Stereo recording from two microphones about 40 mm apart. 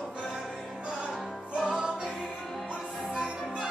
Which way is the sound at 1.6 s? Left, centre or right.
Right.